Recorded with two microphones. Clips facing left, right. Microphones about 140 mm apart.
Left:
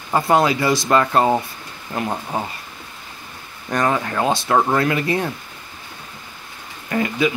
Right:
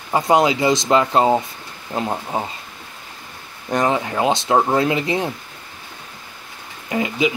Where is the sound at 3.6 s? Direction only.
20° right (ahead or behind).